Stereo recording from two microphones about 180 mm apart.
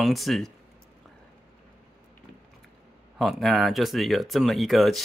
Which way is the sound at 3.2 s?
Centre (ahead or behind).